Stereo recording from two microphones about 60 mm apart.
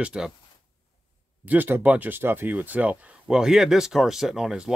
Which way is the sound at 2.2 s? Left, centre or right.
Right.